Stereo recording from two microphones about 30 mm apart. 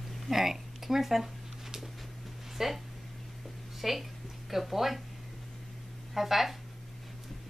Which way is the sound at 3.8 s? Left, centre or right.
Centre.